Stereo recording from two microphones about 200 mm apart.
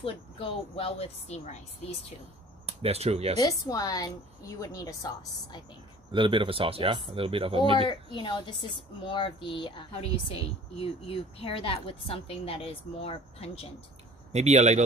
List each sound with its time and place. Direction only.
0.0 s a woman's voice: 30° left (ahead or behind)
2.6 s speech: 30° right (ahead or behind)
3.3 s a woman's voice: 20° left (ahead or behind)
6.1 s speech: 25° right (ahead or behind)
8.1 s a woman's voice: 25° left (ahead or behind)
14.3 s speech: 35° right (ahead or behind)